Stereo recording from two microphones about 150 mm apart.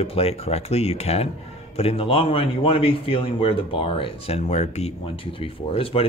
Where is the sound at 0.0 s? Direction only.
40° left (ahead or behind).